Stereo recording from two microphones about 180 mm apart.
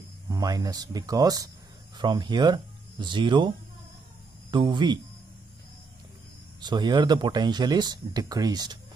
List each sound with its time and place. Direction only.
0.3 s speech: 20° right (ahead or behind)
6.6 s speech: 25° right (ahead or behind)